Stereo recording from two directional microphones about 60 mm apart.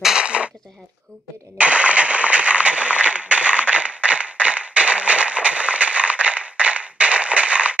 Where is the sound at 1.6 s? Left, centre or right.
Right.